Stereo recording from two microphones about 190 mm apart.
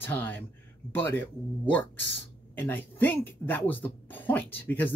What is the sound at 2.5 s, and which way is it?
A woman's voice, 10° left (ahead or behind).